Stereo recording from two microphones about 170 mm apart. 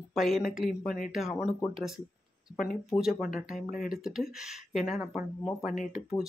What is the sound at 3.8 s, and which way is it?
Speech, centre (ahead or behind).